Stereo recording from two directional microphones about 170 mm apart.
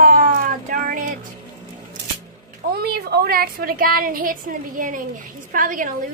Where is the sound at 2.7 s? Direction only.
70° right (ahead or behind).